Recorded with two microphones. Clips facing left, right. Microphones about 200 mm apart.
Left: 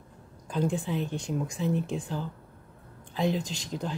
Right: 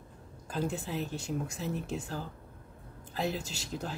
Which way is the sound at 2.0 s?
40° right (ahead or behind).